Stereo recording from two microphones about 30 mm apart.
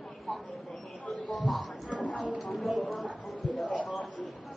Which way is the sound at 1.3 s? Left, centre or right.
Centre.